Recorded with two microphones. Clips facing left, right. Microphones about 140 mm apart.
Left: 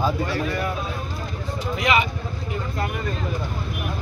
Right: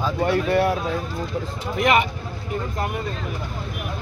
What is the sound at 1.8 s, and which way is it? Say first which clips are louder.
Speech: right 3 dB; 55° right (ahead or behind).